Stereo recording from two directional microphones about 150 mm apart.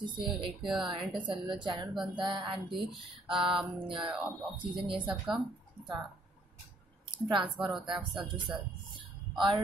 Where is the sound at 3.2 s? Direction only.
5° right (ahead or behind).